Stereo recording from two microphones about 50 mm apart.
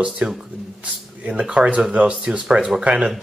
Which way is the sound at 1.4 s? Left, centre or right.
Right.